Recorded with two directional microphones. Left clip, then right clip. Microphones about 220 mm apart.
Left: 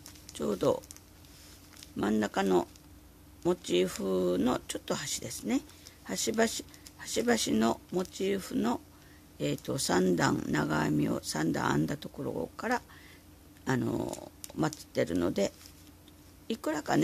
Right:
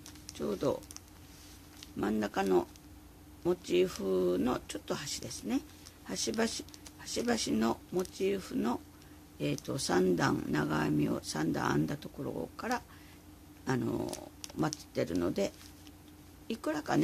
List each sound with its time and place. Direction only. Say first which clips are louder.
0.4 s speech: left 4 dB; 20° left (ahead or behind)
2.0 s speech: left 3 dB; 20° left (ahead or behind)